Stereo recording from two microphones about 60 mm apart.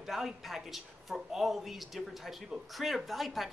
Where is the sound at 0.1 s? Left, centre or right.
Centre.